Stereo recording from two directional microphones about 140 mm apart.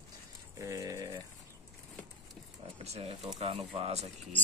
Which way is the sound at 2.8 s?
45° right (ahead or behind).